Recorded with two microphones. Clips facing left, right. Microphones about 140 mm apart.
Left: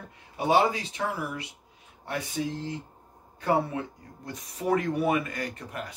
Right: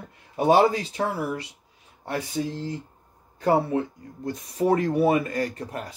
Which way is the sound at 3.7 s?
35° right (ahead or behind).